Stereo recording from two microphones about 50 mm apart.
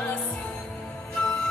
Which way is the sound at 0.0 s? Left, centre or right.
Left.